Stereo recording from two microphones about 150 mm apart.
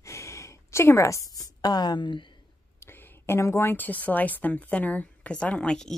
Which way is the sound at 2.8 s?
15° left (ahead or behind).